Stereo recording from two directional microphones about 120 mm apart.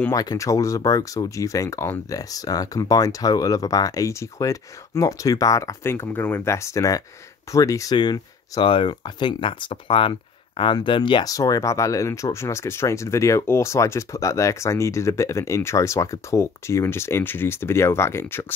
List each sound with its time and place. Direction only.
0.1 s speech: 30° left (ahead or behind)
11.3 s speech: 30° left (ahead or behind)